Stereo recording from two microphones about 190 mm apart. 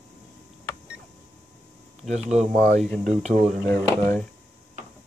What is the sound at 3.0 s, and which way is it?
Speech, 35° right (ahead or behind).